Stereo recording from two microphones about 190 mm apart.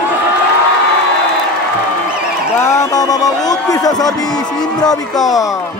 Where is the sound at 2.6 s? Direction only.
15° left (ahead or behind).